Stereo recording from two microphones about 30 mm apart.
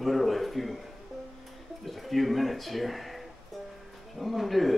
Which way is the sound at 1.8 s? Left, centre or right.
Centre.